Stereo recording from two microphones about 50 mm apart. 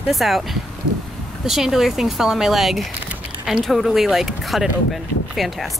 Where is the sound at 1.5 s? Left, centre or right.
Centre.